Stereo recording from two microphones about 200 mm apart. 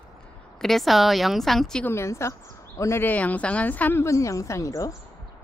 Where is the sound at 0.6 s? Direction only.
Centre (ahead or behind).